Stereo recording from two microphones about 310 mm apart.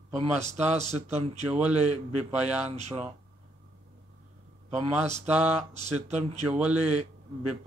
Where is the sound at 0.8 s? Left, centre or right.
Right.